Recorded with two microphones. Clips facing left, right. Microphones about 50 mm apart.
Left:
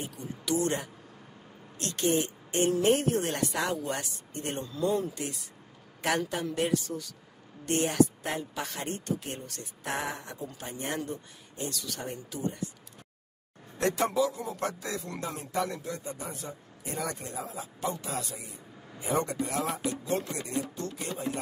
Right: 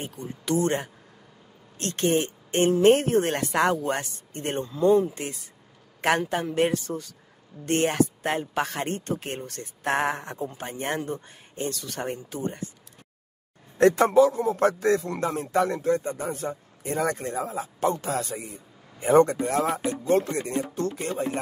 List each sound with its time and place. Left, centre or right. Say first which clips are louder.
0.0 s speech: right 3 dB; right
13.7 s speech: right 9 dB; right